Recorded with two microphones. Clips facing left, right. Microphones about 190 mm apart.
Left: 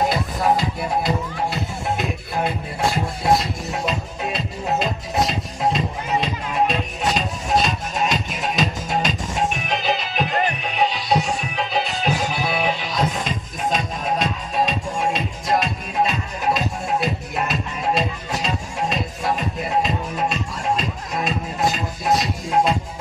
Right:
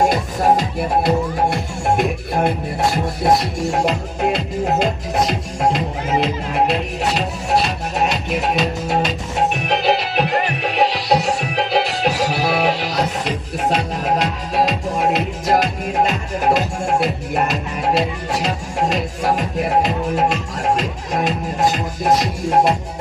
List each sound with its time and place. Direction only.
0.0 s music: 45° right (ahead or behind)
1.5 s music: 65° right (ahead or behind)
3.6 s music: 75° right (ahead or behind)